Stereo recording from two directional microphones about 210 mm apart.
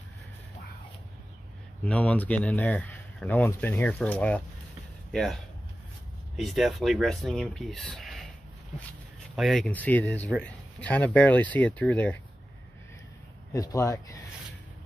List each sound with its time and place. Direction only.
1.9 s speech: 5° left (ahead or behind)
9.3 s speech: centre (ahead or behind)
13.5 s speech: 15° left (ahead or behind)